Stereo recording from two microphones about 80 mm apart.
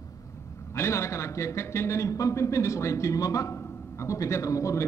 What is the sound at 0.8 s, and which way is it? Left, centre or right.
A man's voice, left.